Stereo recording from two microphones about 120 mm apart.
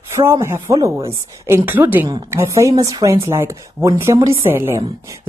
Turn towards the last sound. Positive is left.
turn(degrees=-20)  # may be behind; listen again after turning